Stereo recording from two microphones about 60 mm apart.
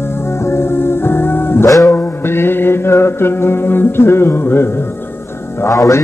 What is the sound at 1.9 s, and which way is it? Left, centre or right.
Mantra, left.